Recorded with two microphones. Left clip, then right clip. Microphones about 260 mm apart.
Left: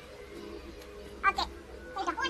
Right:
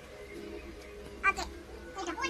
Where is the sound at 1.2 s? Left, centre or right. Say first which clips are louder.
Left 2 dB; centre.